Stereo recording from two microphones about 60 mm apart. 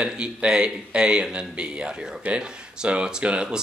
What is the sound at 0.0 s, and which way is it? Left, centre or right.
Speech, centre.